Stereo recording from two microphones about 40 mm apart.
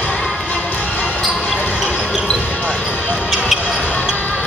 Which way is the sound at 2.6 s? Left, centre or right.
Left.